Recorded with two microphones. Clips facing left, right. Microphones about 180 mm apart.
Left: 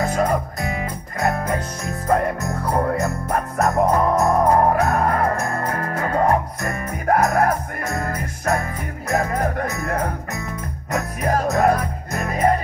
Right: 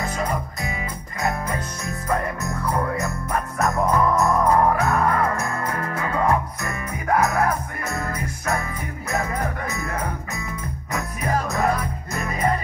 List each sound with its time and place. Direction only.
0.0 s music: 45° left (ahead or behind)
2.0 s music: 40° left (ahead or behind)